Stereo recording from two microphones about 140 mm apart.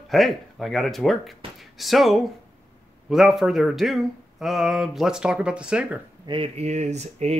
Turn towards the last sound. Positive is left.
turn(degrees=-55)  # may be behind; listen again after turning